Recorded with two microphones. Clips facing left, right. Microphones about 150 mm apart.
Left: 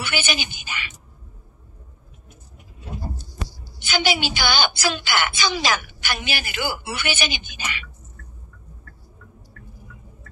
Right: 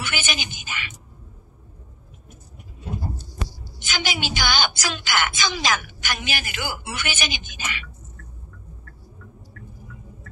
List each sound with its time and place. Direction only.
0.0 s a woman's voice: 45° right (ahead or behind)
3.8 s a woman's voice: 45° right (ahead or behind)